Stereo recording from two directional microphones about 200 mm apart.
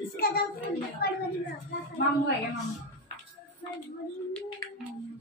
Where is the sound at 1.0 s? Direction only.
50° left (ahead or behind).